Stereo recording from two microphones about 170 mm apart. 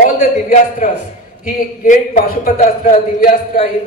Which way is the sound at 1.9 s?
50° left (ahead or behind).